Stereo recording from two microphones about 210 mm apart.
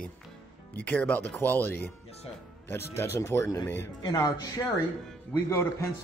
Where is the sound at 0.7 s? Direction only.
10° left (ahead or behind).